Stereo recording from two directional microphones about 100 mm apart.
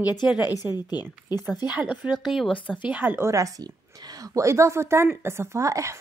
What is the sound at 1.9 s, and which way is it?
Speech, 5° right (ahead or behind).